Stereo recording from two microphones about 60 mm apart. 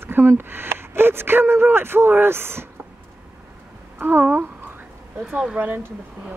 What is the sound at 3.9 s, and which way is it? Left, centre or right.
Speech, right.